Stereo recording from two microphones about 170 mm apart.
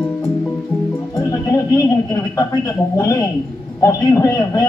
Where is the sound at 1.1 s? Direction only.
15° left (ahead or behind).